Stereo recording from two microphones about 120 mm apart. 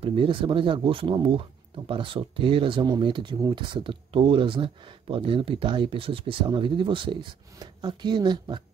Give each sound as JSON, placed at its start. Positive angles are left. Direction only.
{"t": 0.0, "sound": "speech", "side_deg": -50}